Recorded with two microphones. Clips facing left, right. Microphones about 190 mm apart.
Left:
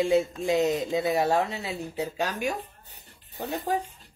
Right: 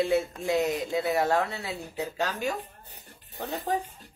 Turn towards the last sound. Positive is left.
turn(degrees=10)  # may be behind; listen again after turning